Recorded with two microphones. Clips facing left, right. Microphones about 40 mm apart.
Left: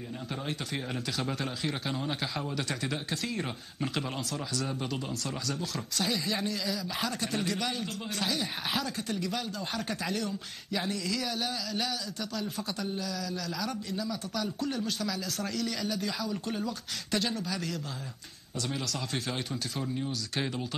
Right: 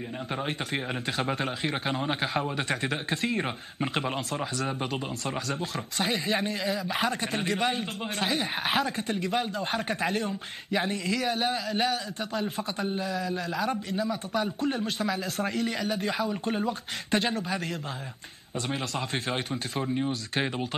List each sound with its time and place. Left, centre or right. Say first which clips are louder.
0.5 s speech: right 4 dB; right
18.7 s speech: right 4 dB; right